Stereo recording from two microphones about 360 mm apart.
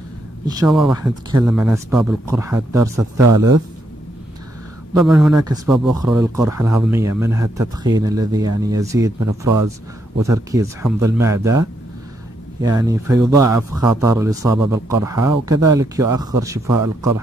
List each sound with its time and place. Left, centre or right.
0.5 s a man's voice: centre
3.3 s a man's voice: right
4.9 s a man's voice: centre
12.6 s a man's voice: centre
16.6 s a man's voice: right